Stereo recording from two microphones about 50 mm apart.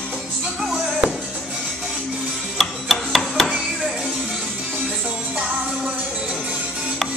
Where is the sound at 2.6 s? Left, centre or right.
Centre.